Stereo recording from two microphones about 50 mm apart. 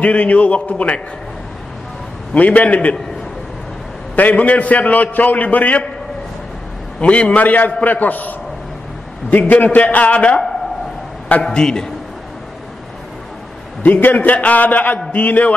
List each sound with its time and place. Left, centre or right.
0.0 s a man's voice: left
2.3 s a man's voice: left
4.1 s a man's voice: left
7.0 s a man's voice: left
11.4 s a man's voice: centre
13.8 s a man's voice: left